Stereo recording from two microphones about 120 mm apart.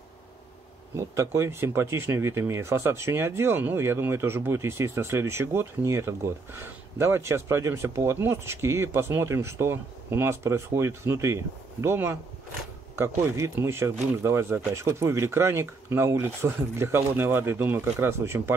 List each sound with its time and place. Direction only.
0.9 s speech: 25° right (ahead or behind)
13.4 s speech: 20° right (ahead or behind)